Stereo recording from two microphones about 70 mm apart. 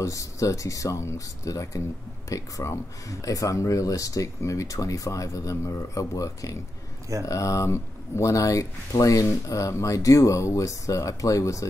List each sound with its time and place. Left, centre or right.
0.0 s speech: left